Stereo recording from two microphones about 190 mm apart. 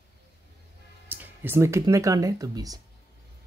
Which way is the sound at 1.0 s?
10° right (ahead or behind).